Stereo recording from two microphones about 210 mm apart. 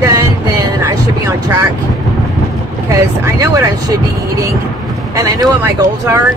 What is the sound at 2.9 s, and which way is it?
Speech, 15° right (ahead or behind).